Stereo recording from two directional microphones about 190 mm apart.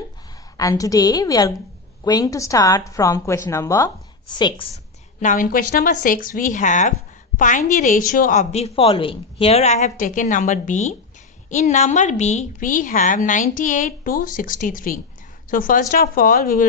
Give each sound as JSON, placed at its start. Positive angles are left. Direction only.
{"t": 0.6, "sound": "a woman's voice", "side_deg": 20}
{"t": 5.2, "sound": "a woman's voice", "side_deg": 45}